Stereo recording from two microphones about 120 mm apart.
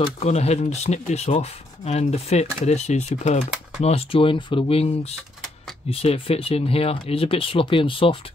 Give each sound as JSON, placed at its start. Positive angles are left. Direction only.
{"t": 0.2, "sound": "speech", "side_deg": 65}
{"t": 3.8, "sound": "speech", "side_deg": 55}